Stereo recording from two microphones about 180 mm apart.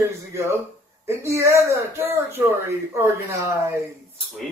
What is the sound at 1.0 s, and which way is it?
Speech, 15° right (ahead or behind).